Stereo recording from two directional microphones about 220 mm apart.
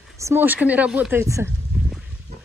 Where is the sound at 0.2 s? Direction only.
10° right (ahead or behind).